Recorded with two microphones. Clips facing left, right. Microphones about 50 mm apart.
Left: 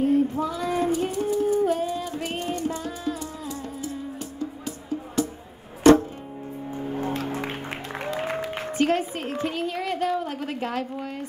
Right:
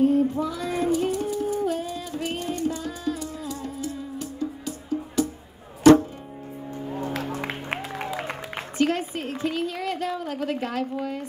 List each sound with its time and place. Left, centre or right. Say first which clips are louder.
0.0 s female singing: right 1 dB; left
4.4 s music: right 2 dB; left
6.9 s music: left 1 dB; left
8.7 s a sound: left 1 dB; left
10.6 s a woman's voice: right 1 dB; left